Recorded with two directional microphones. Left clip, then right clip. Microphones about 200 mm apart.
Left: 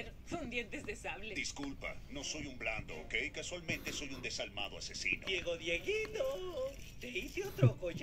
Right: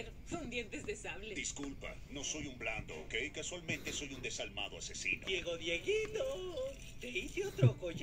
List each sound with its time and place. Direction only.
0.3 s speech: centre (ahead or behind)